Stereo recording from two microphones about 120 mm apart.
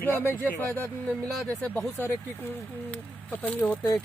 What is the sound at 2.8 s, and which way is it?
Speech, 15° left (ahead or behind).